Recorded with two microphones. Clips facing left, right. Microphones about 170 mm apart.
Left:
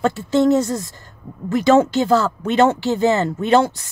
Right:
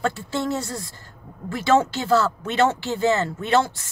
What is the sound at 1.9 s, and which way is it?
A woman's voice, 15° left (ahead or behind).